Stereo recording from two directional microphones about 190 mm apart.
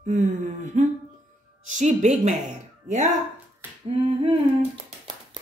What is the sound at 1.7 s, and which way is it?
Speech, 40° right (ahead or behind).